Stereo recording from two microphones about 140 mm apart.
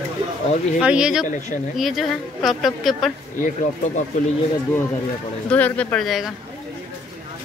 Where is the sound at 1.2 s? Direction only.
65° left (ahead or behind).